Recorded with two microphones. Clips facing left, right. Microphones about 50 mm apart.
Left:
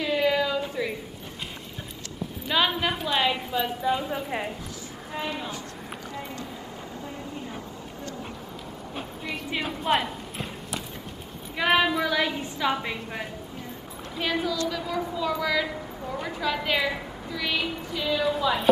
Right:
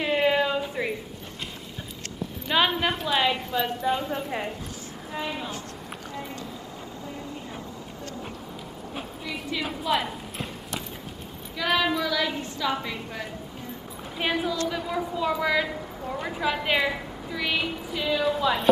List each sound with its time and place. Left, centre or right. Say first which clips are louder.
0.0 s a sound: right 1 dB; right
2.5 s a woman's voice: right 1 dB; centre
9.8 s clip-clop: left 2 dB; centre
11.5 s a woman's voice: left 2 dB; left
14.2 s speech: right 1 dB; centre
15.6 s a woman's voice: even; centre